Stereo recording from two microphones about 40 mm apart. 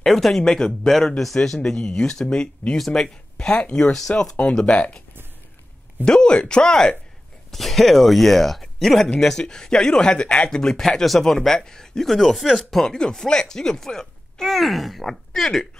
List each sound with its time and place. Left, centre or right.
0.0 s speech: centre
3.7 s speech: centre
4.6 s speech: left
6.0 s speech: left
7.5 s speech: centre
9.4 s speech: centre
10.5 s speech: centre